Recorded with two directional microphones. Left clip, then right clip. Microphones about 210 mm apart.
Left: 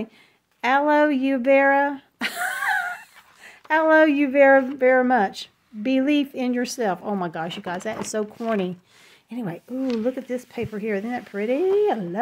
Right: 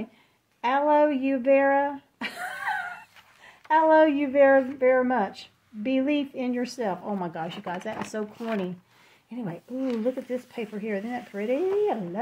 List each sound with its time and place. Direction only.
0.6 s speech: 45° left (ahead or behind)